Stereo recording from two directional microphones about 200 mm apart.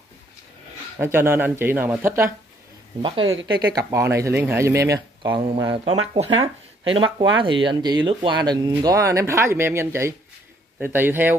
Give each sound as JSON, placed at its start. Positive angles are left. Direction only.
{"t": 0.9, "sound": "speech", "side_deg": -10}
{"t": 3.0, "sound": "speech", "side_deg": -25}